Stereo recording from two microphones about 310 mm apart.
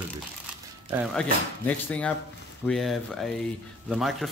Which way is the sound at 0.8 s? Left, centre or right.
Centre.